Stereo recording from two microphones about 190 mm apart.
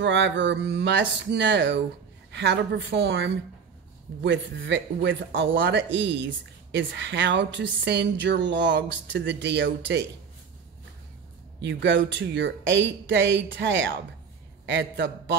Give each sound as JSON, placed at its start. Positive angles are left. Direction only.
{"t": 0.0, "sound": "a woman's voice", "side_deg": -70}
{"t": 11.6, "sound": "speech", "side_deg": -70}